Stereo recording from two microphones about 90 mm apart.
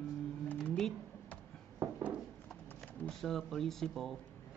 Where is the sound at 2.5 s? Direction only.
Centre (ahead or behind).